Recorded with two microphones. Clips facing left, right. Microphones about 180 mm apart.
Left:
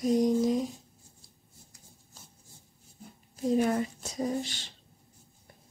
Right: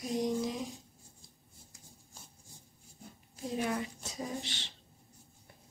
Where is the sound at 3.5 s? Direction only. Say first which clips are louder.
Left 8 dB; 45° left (ahead or behind).